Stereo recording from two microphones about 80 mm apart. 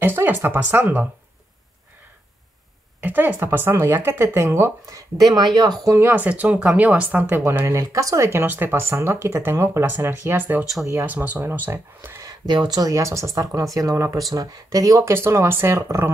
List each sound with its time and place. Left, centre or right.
0.0 s speech: right
3.0 s speech: right
4.8 s speech: right
5.9 s speech: right
6.2 s speech: centre
7.7 s speech: right
9.8 s speech: right
12.6 s speech: right